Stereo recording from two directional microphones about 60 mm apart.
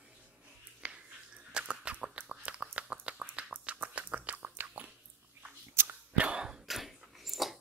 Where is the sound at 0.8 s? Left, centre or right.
Centre.